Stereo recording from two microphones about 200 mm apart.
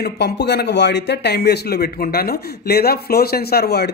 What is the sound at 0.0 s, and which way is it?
Speech, 55° left (ahead or behind).